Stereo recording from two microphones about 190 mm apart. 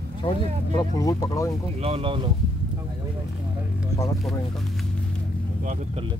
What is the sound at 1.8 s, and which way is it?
Speech, 30° right (ahead or behind).